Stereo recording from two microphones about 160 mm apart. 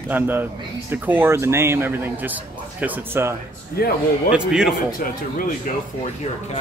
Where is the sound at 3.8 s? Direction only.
70° left (ahead or behind).